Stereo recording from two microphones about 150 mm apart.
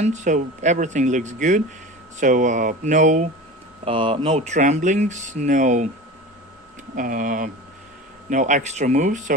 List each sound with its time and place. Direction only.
0.0 s speech: 50° right (ahead or behind)
3.8 s speech: 35° right (ahead or behind)
4.5 s speech: 50° right (ahead or behind)
7.0 s speech: 60° right (ahead or behind)